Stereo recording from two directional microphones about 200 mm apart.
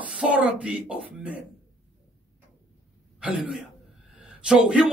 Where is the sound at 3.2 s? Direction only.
5° right (ahead or behind).